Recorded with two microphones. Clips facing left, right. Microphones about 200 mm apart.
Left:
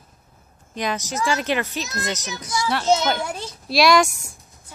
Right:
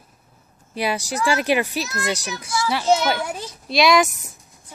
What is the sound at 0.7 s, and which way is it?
Speech, 10° right (ahead or behind).